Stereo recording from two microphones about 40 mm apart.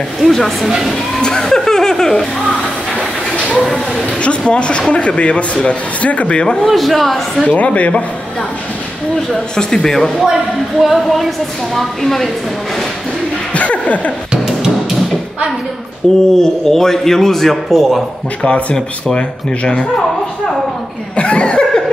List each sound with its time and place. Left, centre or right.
0.2 s a woman's voice: centre
1.2 s speech: centre
4.2 s speech: left
6.6 s a woman's voice: centre
7.4 s speech: left
9.6 s a man's voice: centre
10.8 s a woman's voice: centre
13.5 s speech: left
16.0 s a man's voice: centre
18.4 s speech: left
21.2 s a sound: left